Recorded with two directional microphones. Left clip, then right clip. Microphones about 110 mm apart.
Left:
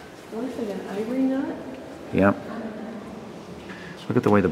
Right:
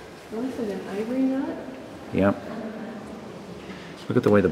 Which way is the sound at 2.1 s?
15° left (ahead or behind).